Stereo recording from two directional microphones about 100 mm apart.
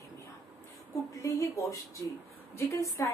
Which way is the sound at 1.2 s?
35° left (ahead or behind).